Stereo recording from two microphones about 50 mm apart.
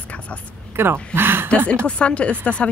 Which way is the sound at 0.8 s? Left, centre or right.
Right.